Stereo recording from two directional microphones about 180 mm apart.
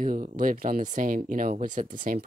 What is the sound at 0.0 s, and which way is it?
Speech, 45° right (ahead or behind).